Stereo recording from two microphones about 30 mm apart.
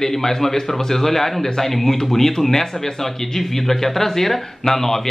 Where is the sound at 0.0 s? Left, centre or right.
Centre.